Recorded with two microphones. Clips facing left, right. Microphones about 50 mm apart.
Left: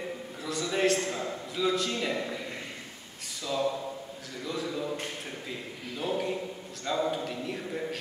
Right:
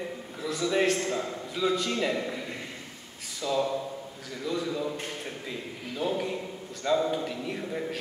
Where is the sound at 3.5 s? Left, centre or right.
Centre.